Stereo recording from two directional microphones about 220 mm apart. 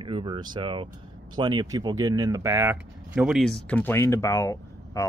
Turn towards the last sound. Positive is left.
turn(degrees=15)  # may be behind; listen again after turning